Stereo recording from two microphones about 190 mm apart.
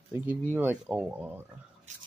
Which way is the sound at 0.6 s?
10° right (ahead or behind).